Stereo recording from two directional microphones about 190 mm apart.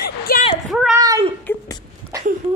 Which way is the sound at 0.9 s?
20° right (ahead or behind).